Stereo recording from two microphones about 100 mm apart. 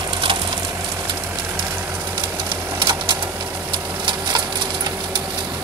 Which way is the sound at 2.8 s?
50° right (ahead or behind).